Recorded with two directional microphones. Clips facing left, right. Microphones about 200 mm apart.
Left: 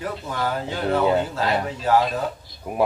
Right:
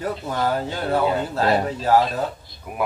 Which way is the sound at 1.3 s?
40° right (ahead or behind).